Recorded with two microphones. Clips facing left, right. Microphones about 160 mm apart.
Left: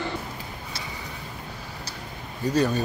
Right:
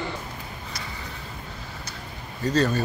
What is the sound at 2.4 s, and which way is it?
Speech, 10° left (ahead or behind).